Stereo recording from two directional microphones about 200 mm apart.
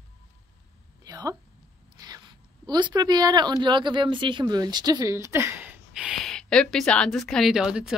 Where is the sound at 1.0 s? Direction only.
20° right (ahead or behind).